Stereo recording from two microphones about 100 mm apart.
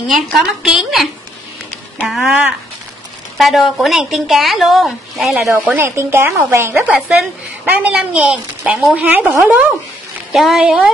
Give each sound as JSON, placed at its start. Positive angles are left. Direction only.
{"t": 0.1, "sound": "speech", "side_deg": -5}
{"t": 2.0, "sound": "speech", "side_deg": 0}
{"t": 3.3, "sound": "speech", "side_deg": 0}
{"t": 5.5, "sound": "a woman's voice", "side_deg": -20}
{"t": 10.3, "sound": "speech", "side_deg": -5}